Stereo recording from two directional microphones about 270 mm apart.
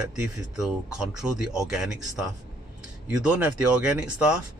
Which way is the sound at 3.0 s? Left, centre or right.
Centre.